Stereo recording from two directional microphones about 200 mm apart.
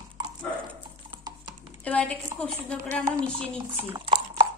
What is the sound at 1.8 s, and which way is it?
Speech, 5° left (ahead or behind).